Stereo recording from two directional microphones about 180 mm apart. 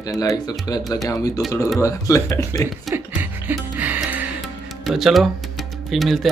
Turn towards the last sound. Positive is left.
turn(degrees=0)  # may be behind; listen again after turning